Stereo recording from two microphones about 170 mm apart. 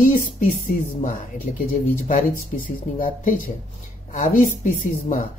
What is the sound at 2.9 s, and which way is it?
Speech, 50° left (ahead or behind).